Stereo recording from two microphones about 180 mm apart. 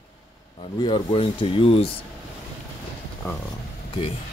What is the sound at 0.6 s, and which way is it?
Speech, 25° left (ahead or behind).